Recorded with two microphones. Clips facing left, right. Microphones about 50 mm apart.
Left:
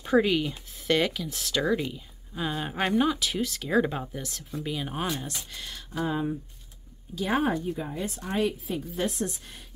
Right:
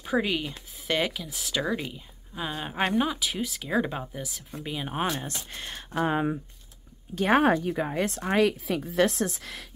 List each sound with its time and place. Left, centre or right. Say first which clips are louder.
0.0 s speech: left 4 dB; centre
5.2 s a woman's voice: right 1 dB; right